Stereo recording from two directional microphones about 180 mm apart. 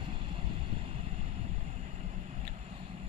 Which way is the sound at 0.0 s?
25° right (ahead or behind).